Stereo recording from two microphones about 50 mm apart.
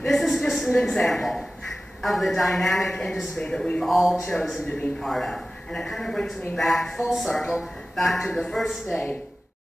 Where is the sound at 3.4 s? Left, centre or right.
Centre.